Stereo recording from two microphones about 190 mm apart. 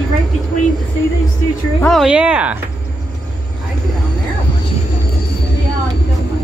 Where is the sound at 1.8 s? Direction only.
Centre (ahead or behind).